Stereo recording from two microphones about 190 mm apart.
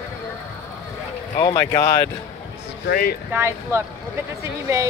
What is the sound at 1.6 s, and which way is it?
Speech, 15° left (ahead or behind).